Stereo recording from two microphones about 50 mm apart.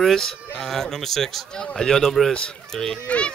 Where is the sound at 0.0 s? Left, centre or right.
Centre.